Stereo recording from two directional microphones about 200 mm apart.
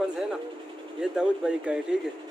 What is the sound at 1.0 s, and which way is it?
Speech, 5° right (ahead or behind).